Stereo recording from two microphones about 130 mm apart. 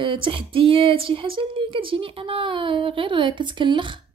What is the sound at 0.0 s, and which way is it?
Speech, 40° right (ahead or behind).